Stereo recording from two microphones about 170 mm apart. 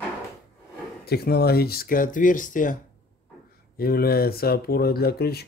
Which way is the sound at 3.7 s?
65° left (ahead or behind).